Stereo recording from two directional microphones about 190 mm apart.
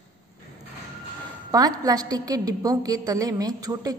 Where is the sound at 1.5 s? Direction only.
20° right (ahead or behind).